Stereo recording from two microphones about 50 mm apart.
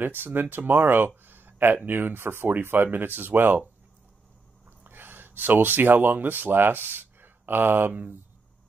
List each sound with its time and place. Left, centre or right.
0.0 s speech: right
4.6 s speech: right